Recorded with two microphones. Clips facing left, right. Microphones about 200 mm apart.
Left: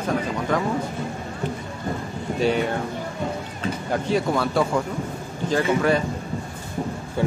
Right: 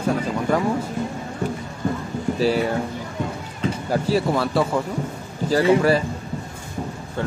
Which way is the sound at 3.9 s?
5° right (ahead or behind).